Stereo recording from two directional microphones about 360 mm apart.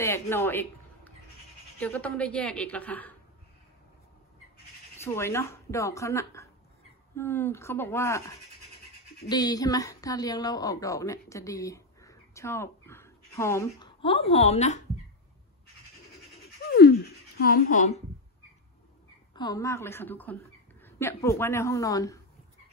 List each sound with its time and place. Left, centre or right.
0.0 s a sound: centre
1.8 s a woman's voice: centre
4.9 s a woman's voice: centre
16.6 s a sound: left
17.4 s a woman's voice: left
19.3 s speech: centre